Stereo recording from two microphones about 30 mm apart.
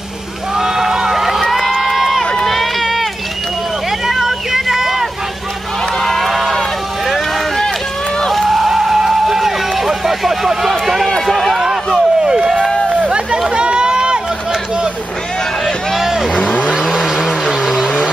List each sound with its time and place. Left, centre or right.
0.6 s a sound: centre
1.2 s crowd: centre
2.4 s run: centre
4.1 s a sound: centre
5.9 s run: centre
8.5 s a sound: centre
11.1 s run: centre
11.3 s run: centre
12.9 s a sound: right
13.6 s run: right
16.0 s vehicle: centre
16.8 s vehicle: centre